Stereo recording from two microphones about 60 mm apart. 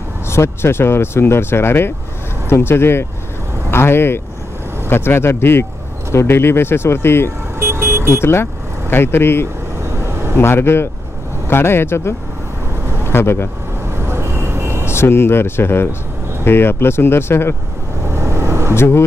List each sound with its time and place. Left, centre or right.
0.3 s speech: left
7.5 s vehicle: right
8.1 s speech: left
9.8 s vehicle: right
10.3 s speech: left
12.8 s vehicle: right
13.1 s speech: left
13.8 s vehicle: right
14.9 s speech: left
18.0 s vehicle: right
18.8 s speech: left